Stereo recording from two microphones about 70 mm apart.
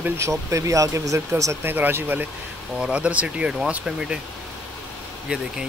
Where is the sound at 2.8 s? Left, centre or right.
Centre.